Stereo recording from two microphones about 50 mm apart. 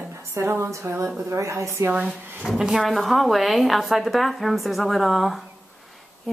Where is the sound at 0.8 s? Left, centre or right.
Right.